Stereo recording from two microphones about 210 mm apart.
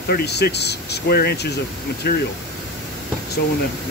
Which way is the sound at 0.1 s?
50° left (ahead or behind).